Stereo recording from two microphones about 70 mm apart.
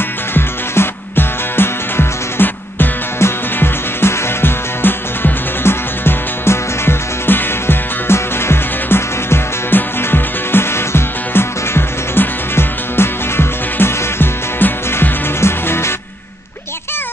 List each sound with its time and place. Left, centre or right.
0.3 s music: left